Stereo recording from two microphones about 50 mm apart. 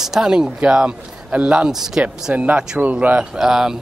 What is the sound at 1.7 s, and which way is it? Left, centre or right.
Speech, centre.